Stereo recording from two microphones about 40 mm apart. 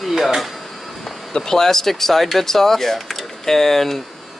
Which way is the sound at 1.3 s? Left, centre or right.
Centre.